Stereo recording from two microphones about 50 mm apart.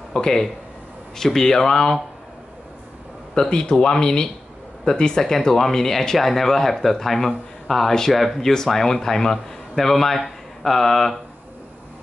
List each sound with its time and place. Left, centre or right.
0.1 s speech: centre
3.3 s speech: centre